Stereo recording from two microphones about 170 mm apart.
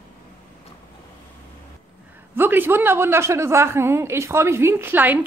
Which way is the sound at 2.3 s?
10° right (ahead or behind).